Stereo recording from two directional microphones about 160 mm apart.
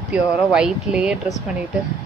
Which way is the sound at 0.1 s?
5° right (ahead or behind).